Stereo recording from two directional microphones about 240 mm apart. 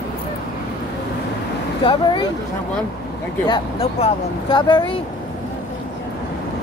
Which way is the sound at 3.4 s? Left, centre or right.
Left.